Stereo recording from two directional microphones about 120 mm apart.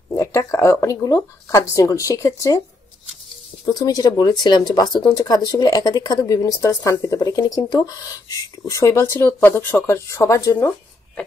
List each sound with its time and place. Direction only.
0.1 s speech: 20° left (ahead or behind)
3.6 s speech: 30° left (ahead or behind)